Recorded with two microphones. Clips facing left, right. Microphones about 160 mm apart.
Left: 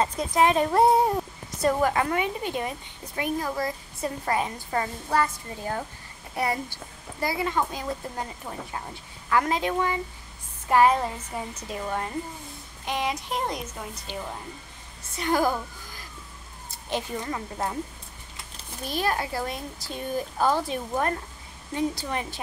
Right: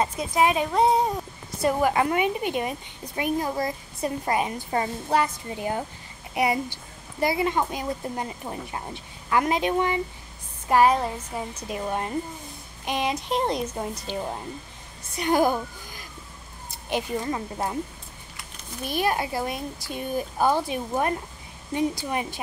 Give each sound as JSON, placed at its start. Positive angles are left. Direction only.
{"t": 0.0, "sound": "a woman's voice", "side_deg": -10}
{"t": 0.7, "sound": "speech", "side_deg": 5}
{"t": 1.6, "sound": "a woman's voice", "side_deg": -10}
{"t": 15.1, "sound": "speech", "side_deg": -20}
{"t": 18.9, "sound": "a woman's voice", "side_deg": -15}